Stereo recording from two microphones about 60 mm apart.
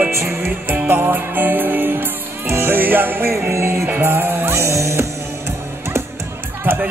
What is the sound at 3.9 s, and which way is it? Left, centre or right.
Speech, right.